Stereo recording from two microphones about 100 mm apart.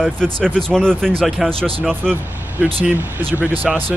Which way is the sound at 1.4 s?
65° right (ahead or behind).